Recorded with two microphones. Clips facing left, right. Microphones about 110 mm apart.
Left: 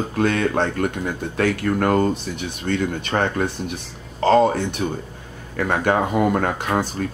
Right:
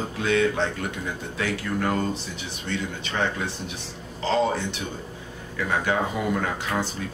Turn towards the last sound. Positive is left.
turn(degrees=50)  # may be behind; listen again after turning